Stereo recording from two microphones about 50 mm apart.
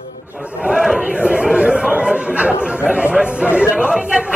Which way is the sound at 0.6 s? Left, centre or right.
Centre.